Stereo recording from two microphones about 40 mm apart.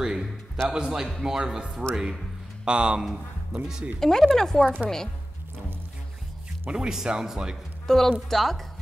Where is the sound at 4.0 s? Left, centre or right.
Centre.